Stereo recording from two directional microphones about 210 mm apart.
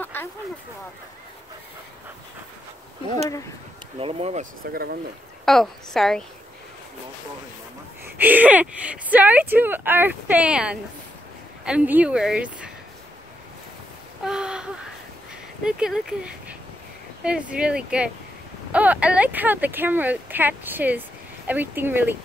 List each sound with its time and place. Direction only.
0.0 s a sound: 10° left (ahead or behind)
4.0 s speech: 30° right (ahead or behind)
5.4 s speech: centre (ahead or behind)
8.0 s speech: 10° right (ahead or behind)
14.2 s a sound: 5° right (ahead or behind)
15.6 s speech: 5° right (ahead or behind)